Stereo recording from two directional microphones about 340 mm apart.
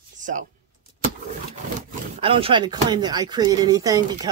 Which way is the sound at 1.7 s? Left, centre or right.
Centre.